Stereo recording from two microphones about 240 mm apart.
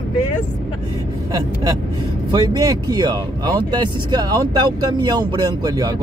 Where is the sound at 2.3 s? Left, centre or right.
Centre.